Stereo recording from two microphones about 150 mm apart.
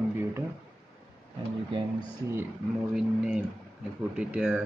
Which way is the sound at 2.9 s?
5° right (ahead or behind).